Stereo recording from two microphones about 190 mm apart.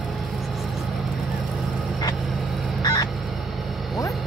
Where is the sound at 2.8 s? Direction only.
20° left (ahead or behind).